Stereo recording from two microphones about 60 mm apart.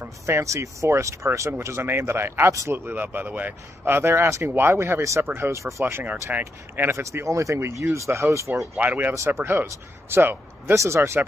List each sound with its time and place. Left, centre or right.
0.4 s speech: right
5.2 s speech: right
5.6 s speech: right
6.4 s speech: right
8.5 s speech: right
9.1 s speech: right